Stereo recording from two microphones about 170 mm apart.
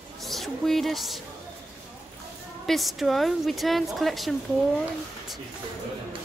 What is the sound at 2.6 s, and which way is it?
A woman's voice, centre (ahead or behind).